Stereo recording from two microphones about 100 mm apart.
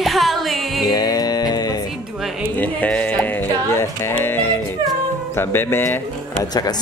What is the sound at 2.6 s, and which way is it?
Speech, 15° left (ahead or behind).